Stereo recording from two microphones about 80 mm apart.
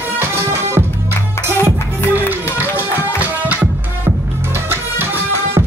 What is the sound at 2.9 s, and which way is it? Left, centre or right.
Music, left.